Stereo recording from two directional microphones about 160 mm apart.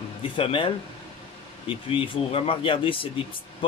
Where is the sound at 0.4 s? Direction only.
35° left (ahead or behind).